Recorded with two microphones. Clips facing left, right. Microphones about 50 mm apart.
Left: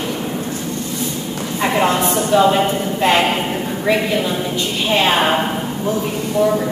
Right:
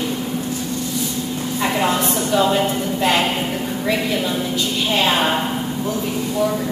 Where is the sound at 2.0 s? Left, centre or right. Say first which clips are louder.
Left 4 dB; left.